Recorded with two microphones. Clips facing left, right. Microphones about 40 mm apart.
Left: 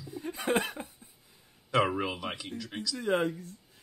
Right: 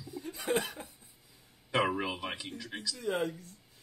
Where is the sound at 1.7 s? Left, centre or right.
Centre.